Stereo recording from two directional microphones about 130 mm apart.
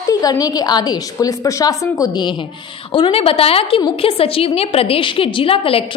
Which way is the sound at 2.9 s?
45° left (ahead or behind).